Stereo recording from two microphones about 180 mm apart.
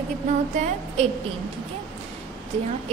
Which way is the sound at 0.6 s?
40° right (ahead or behind).